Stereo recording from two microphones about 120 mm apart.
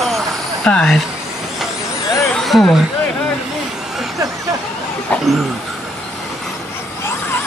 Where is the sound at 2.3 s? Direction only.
Centre (ahead or behind).